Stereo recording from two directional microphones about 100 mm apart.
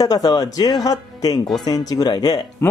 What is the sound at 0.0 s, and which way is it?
Speech, 40° left (ahead or behind).